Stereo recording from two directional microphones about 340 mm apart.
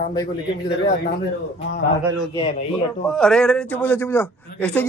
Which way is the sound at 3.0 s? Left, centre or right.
Centre.